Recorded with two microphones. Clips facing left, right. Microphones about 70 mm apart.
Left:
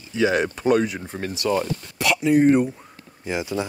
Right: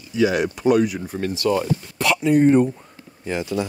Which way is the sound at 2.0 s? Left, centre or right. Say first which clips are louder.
Right 1 dB; centre.